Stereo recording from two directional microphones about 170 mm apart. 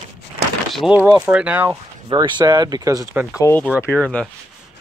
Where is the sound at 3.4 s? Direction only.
10° left (ahead or behind).